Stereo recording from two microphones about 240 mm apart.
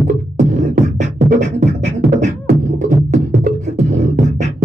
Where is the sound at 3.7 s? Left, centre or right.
Right.